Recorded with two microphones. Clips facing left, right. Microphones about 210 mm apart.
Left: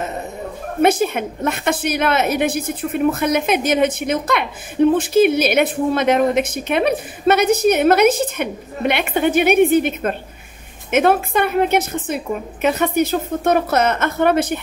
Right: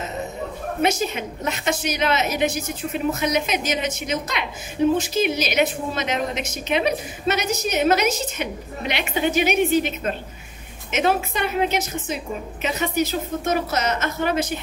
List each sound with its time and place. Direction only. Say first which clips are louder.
0.8 s a woman's voice: left 7 dB; 55° left (ahead or behind)